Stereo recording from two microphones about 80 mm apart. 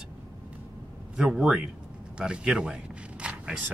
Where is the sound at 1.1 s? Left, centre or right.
Centre.